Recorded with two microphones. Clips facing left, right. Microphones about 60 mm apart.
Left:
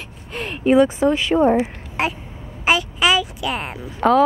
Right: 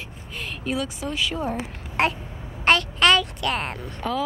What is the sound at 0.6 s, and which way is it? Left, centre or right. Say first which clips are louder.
Speech: left 14 dB; left.